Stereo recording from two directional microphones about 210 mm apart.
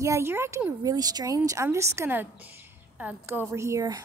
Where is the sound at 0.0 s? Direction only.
10° right (ahead or behind).